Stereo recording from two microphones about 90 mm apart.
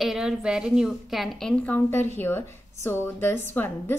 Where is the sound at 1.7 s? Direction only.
25° left (ahead or behind).